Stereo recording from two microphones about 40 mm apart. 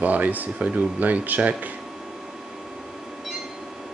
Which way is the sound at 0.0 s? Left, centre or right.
Right.